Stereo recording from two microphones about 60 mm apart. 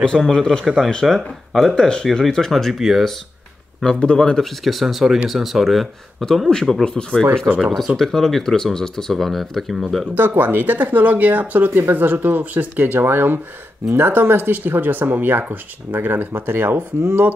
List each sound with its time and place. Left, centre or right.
0.0 s a man's voice: centre
3.8 s speech: centre
10.1 s speech: right